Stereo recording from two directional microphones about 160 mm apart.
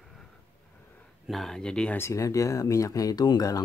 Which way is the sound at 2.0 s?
20° left (ahead or behind).